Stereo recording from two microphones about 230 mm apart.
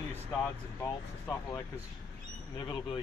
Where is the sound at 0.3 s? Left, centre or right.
Centre.